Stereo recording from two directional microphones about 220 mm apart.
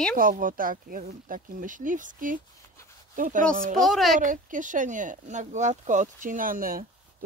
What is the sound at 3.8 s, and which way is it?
Speech, centre (ahead or behind).